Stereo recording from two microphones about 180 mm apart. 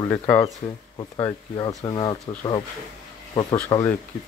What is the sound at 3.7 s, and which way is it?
Speech, 25° left (ahead or behind).